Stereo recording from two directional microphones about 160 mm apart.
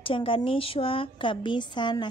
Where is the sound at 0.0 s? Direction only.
35° left (ahead or behind).